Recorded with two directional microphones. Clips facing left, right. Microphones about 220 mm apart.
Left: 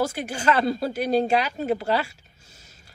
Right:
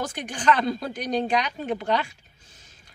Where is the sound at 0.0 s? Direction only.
10° left (ahead or behind).